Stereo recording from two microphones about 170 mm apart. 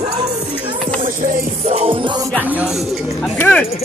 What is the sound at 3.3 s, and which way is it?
Speech, 10° left (ahead or behind).